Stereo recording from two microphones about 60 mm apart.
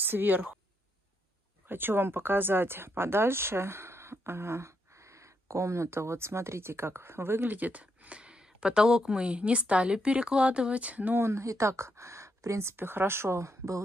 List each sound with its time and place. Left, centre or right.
0.0 s speech: right
1.7 s speech: right
7.5 s speech: right
11.1 s speech: right